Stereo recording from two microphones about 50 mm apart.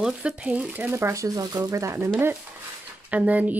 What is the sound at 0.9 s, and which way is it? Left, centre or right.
Speech, right.